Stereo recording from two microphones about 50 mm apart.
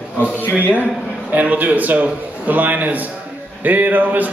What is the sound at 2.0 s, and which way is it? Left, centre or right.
Speech, right.